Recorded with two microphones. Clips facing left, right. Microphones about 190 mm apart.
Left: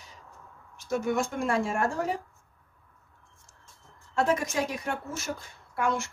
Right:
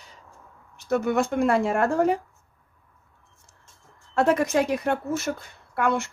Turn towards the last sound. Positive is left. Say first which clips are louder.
# right 4 dB
turn(degrees=-60)  # may be behind; listen again after turning